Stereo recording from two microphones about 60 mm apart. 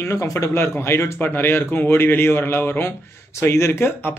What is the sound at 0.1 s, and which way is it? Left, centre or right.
A man's voice, left.